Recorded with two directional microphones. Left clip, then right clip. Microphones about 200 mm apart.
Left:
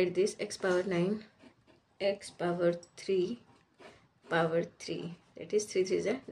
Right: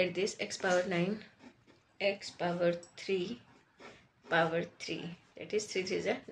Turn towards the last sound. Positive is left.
turn(degrees=60)  # may be behind; listen again after turning